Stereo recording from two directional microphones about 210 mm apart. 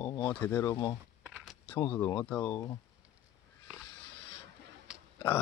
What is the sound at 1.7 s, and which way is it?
Speech, 10° left (ahead or behind).